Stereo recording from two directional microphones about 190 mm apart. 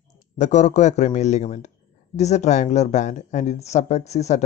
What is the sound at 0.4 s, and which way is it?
Speech, 40° left (ahead or behind).